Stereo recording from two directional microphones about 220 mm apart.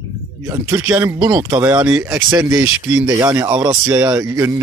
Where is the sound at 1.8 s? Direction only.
5° right (ahead or behind).